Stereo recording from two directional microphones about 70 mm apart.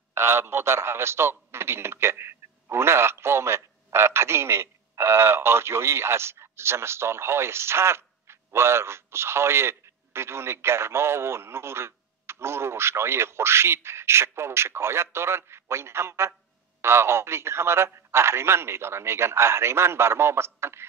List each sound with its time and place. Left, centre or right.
0.1 s a man's voice: right